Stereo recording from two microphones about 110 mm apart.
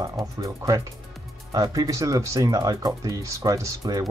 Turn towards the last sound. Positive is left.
turn(degrees=-35)  # may be behind; listen again after turning